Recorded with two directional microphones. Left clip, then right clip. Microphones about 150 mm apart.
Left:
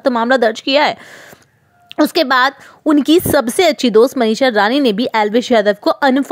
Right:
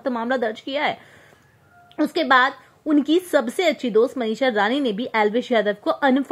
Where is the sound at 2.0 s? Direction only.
40° left (ahead or behind).